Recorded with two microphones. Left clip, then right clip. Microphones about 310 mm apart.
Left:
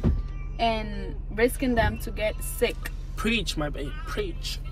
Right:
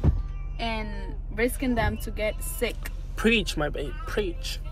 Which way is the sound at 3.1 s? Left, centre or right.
Right.